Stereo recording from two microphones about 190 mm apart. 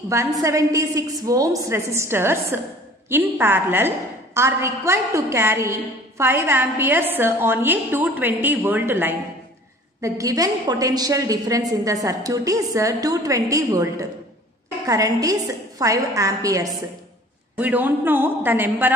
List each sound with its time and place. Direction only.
0.1 s a woman's voice: 15° right (ahead or behind)